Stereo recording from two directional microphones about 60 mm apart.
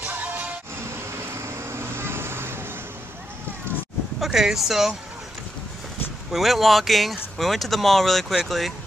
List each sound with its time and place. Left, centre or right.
0.0 s music: right
1.4 s vehicle: right
4.2 s speech: centre
6.3 s speech: centre